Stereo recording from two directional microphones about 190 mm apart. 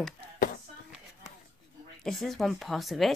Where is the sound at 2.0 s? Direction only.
Centre (ahead or behind).